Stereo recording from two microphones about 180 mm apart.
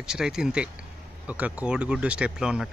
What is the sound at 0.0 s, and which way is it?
Speech, 5° right (ahead or behind).